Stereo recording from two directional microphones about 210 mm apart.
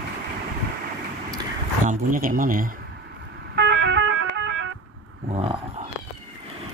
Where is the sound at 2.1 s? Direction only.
40° right (ahead or behind).